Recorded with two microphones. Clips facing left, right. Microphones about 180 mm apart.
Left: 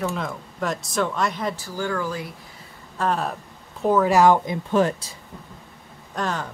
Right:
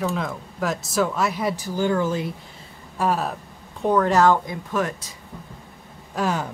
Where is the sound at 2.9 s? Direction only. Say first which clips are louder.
Right 1 dB; 5° right (ahead or behind); by 4.5 s 15° left (ahead or behind).